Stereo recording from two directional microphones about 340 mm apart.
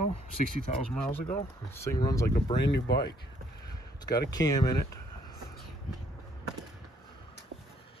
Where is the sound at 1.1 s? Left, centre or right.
Centre.